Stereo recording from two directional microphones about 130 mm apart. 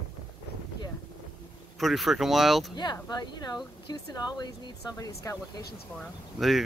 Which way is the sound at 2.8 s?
30° left (ahead or behind).